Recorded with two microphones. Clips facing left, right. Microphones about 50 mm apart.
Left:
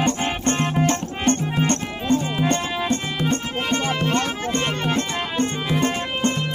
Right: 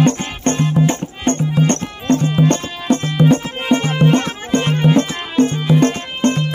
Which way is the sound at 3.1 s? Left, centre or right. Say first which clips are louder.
Right 8 dB; centre.